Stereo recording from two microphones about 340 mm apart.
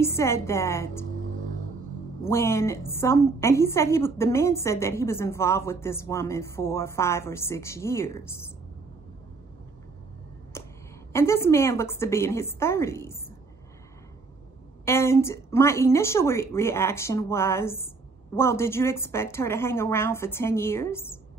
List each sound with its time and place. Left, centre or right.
0.0 s a woman's voice: centre
1.1 s music: right
2.2 s a woman's voice: centre
10.5 s a sound: centre
11.1 s a woman's voice: centre
14.9 s a woman's voice: centre